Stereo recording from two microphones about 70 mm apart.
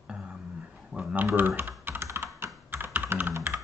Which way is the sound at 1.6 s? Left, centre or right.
Right.